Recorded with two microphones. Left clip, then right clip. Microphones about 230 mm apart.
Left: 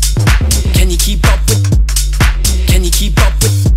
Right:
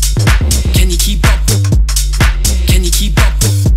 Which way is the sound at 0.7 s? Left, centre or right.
Centre.